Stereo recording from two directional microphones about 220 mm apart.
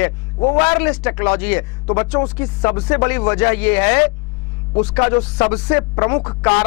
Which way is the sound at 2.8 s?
10° left (ahead or behind).